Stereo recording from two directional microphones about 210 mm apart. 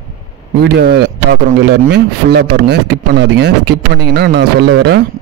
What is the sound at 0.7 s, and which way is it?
A man's voice, 50° right (ahead or behind).